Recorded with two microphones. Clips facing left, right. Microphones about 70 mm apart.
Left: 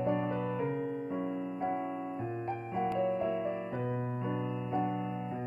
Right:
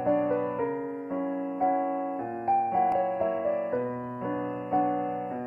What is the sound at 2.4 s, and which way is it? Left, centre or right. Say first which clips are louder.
Music: right 12 dB; right.